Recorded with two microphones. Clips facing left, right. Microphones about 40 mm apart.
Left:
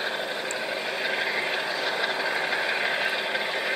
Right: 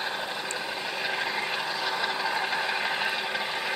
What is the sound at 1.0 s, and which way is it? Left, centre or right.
Vehicle, centre.